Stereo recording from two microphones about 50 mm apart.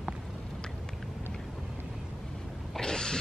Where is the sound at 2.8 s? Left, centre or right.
Centre.